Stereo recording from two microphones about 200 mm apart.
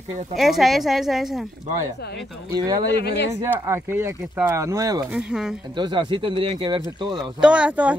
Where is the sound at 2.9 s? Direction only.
55° left (ahead or behind).